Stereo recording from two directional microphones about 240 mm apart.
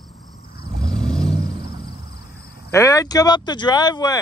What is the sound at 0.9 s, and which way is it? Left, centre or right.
Vehicle, centre.